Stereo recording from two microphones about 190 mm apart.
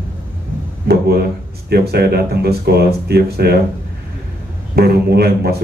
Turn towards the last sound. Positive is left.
turn(degrees=-55)  # may be behind; listen again after turning